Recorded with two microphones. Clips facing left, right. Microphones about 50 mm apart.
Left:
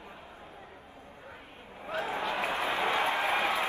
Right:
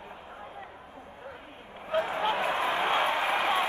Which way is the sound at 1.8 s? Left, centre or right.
Right.